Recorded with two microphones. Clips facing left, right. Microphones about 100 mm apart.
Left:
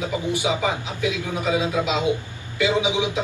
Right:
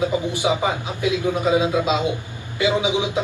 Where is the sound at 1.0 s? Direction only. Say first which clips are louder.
Right 5 dB; 20° right (ahead or behind).